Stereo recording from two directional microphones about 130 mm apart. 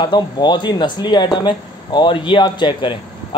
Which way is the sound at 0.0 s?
35° left (ahead or behind).